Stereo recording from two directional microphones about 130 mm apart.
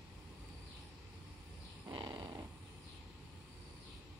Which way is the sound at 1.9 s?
35° right (ahead or behind).